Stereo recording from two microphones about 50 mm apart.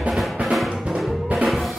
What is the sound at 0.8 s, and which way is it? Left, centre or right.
Drum, centre.